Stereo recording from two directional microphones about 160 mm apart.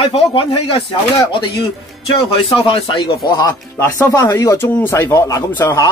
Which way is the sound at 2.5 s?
30° left (ahead or behind).